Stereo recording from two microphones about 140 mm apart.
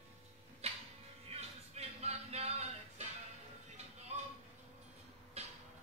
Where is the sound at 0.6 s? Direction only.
50° right (ahead or behind).